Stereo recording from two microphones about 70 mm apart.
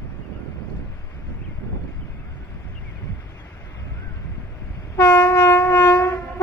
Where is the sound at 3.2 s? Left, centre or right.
Left.